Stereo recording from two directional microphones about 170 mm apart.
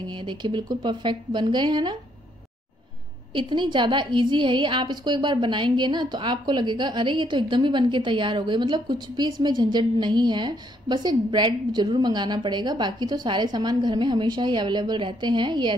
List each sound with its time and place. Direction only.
0.0 s a woman's voice: 30° right (ahead or behind)
3.3 s a woman's voice: 30° right (ahead or behind)